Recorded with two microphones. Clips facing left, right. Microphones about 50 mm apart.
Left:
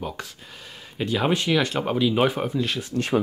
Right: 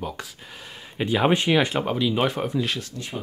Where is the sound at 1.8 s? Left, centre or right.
Centre.